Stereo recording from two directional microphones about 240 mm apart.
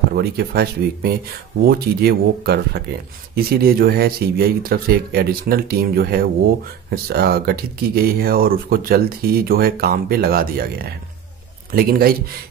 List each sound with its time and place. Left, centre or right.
0.1 s speech: right